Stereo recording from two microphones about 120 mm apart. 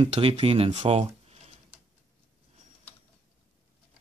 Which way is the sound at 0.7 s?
60° right (ahead or behind).